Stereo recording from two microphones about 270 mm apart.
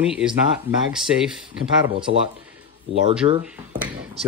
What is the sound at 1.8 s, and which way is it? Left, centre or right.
Speech, centre.